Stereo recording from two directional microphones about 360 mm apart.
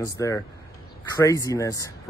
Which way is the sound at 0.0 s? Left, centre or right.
Centre.